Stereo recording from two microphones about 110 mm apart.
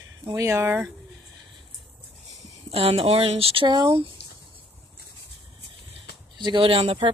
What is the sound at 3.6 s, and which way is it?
Speech, 40° right (ahead or behind).